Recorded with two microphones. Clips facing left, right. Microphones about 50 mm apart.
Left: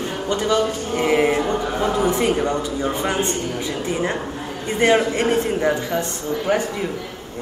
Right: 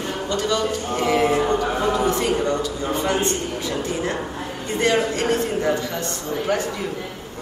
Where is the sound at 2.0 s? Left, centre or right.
Left.